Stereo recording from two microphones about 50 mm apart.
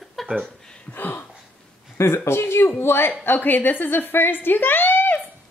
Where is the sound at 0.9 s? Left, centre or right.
Left.